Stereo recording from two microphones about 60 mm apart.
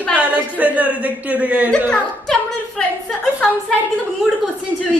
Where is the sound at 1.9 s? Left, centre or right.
Centre.